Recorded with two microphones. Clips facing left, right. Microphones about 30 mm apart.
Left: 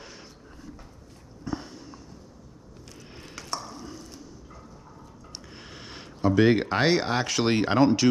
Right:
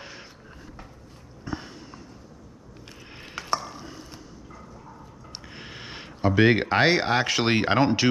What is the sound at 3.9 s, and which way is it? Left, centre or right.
Clip-clop, right.